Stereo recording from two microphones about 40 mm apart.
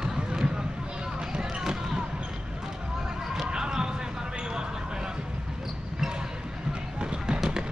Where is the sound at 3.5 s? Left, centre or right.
Centre.